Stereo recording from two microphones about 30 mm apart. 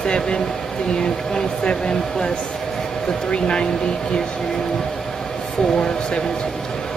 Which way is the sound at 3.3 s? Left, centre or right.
Left.